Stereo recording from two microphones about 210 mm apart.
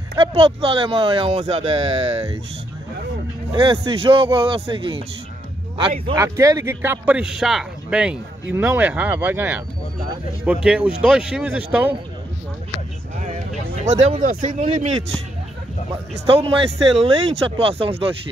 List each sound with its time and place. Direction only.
0.2 s speech: 25° right (ahead or behind)
3.5 s speech: 25° right (ahead or behind)
6.2 s speech: 15° right (ahead or behind)
14.0 s speech: 35° right (ahead or behind)
15.9 s speech: 25° right (ahead or behind)